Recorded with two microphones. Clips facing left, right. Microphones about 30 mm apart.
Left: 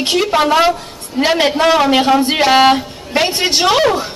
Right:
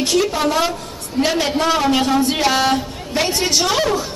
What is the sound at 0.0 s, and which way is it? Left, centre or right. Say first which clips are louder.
A woman's voice: left 3 dB; left.